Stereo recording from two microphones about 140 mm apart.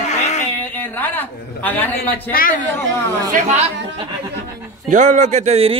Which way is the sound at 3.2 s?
60° right (ahead or behind).